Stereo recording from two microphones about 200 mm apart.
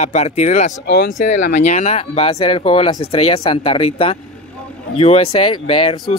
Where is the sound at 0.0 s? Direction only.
35° left (ahead or behind).